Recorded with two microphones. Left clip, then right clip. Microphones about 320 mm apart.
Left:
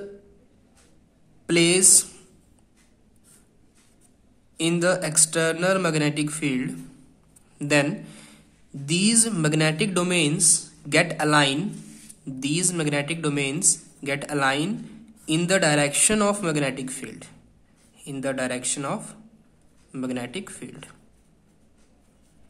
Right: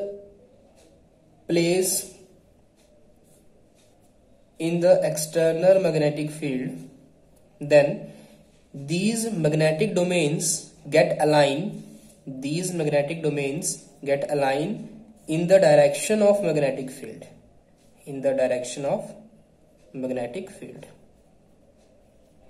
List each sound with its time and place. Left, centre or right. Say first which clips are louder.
1.5 s speech: left 3 dB; left
4.6 s a man's voice: right 4 dB; left